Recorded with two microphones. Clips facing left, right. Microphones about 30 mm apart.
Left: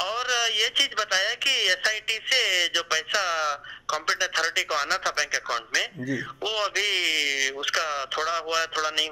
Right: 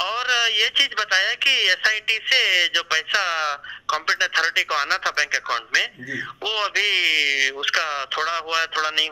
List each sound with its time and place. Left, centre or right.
0.0 s speech: right